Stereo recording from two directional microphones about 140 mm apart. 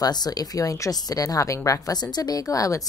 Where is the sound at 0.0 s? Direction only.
30° left (ahead or behind).